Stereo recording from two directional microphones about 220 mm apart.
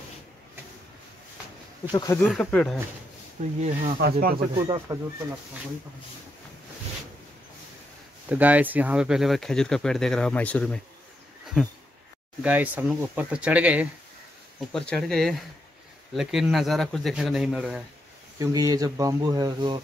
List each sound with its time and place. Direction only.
1.9 s speech: 20° left (ahead or behind)
2.1 s speech: 5° left (ahead or behind)
3.4 s speech: 35° right (ahead or behind)
4.6 s speech: 15° right (ahead or behind)
8.3 s speech: 5° right (ahead or behind)
18.4 s speech: 15° right (ahead or behind)